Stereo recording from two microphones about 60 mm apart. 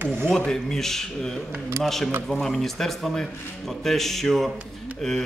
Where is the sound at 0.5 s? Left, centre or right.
Centre.